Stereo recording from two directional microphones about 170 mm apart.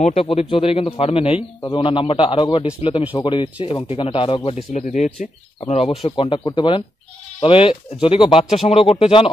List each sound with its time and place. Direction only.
0.0 s speech: 35° left (ahead or behind)
4.5 s speech: 45° left (ahead or behind)